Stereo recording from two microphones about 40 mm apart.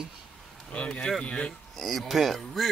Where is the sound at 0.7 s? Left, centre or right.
Left.